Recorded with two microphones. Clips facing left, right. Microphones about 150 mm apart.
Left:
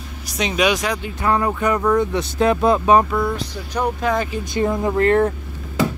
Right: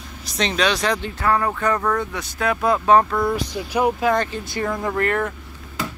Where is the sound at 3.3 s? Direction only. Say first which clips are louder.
Right 2 dB; 10° right (ahead or behind).